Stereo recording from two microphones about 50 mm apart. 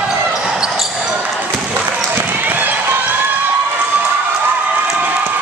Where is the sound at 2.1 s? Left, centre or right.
Right.